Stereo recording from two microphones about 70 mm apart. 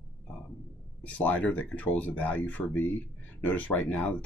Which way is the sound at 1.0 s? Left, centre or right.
Left.